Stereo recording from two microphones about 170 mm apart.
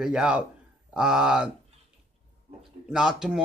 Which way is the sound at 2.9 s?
5° right (ahead or behind).